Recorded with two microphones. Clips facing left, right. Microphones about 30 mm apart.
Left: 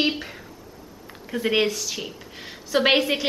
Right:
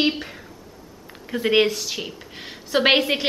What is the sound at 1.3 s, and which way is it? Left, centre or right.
A woman's voice, centre.